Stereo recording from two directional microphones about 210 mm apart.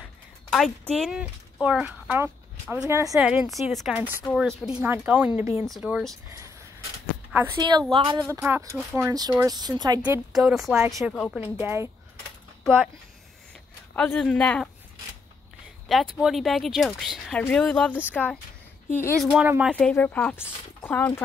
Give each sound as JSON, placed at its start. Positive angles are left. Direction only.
{"t": 0.9, "sound": "speech", "side_deg": -5}
{"t": 3.2, "sound": "speech", "side_deg": -5}
{"t": 7.3, "sound": "a woman's voice", "side_deg": -15}
{"t": 8.2, "sound": "speech", "side_deg": -10}
{"t": 10.0, "sound": "speech", "side_deg": -5}
{"t": 11.6, "sound": "speech", "side_deg": -15}
{"t": 13.9, "sound": "speech", "side_deg": 5}
{"t": 15.9, "sound": "speech", "side_deg": 0}
{"t": 19.3, "sound": "speech", "side_deg": -5}
{"t": 19.7, "sound": "speech", "side_deg": 5}